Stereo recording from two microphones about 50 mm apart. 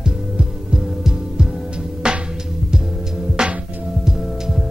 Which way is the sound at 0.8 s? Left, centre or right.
Centre.